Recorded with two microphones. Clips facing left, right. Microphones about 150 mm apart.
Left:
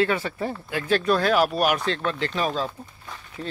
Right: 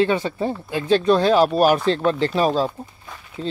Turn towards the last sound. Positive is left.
turn(degrees=-25)  # may be behind; listen again after turning